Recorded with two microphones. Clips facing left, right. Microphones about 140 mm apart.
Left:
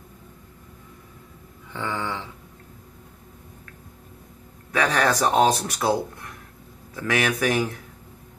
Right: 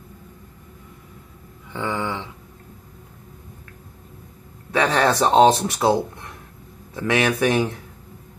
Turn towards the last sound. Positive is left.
turn(degrees=-25)  # may be behind; listen again after turning